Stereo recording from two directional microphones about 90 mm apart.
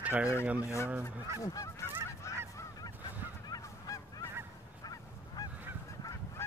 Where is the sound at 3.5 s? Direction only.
40° left (ahead or behind).